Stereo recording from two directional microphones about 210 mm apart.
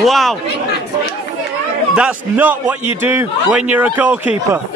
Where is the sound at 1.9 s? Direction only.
5° right (ahead or behind).